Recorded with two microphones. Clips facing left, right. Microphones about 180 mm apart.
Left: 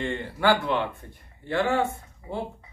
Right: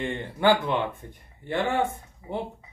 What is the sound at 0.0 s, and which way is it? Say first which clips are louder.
Speech: right 1 dB; 15° right (ahead or behind).